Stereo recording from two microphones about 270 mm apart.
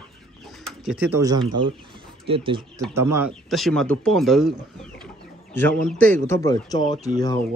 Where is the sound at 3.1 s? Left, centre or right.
Centre.